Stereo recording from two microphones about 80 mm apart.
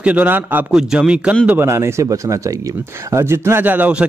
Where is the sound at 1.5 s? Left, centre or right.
Right.